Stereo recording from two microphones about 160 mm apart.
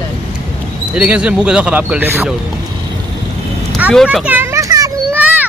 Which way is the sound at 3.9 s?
Centre (ahead or behind).